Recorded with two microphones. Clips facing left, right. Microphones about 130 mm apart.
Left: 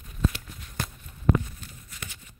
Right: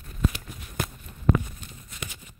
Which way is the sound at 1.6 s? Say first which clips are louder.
Right 3 dB; 15° right (ahead or behind).